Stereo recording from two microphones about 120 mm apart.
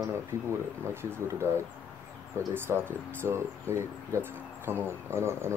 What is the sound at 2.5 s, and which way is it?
Speech, 20° right (ahead or behind).